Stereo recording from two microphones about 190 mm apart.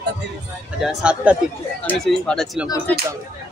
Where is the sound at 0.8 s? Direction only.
5° right (ahead or behind).